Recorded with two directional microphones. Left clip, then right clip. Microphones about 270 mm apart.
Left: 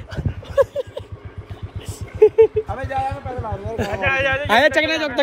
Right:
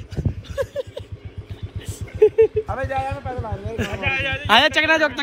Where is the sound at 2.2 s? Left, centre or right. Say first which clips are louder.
Left 2 dB; centre.